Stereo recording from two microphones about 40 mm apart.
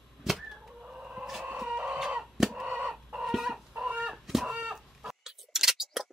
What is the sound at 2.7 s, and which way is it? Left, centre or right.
Chicken, right.